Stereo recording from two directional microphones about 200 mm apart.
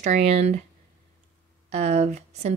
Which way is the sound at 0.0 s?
35° right (ahead or behind).